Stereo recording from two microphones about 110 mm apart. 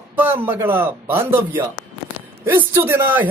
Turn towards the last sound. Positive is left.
turn(degrees=-20)  # may be behind; listen again after turning